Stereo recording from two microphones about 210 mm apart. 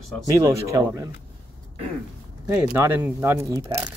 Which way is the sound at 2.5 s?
10° right (ahead or behind).